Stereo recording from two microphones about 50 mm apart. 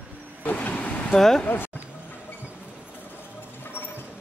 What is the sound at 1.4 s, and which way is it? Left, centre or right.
Speech, left.